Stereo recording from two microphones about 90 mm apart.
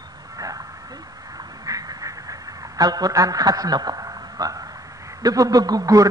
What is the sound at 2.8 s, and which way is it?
A man's voice, 45° right (ahead or behind).